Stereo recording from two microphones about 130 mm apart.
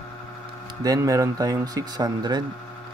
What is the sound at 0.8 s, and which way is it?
Speech, 25° right (ahead or behind).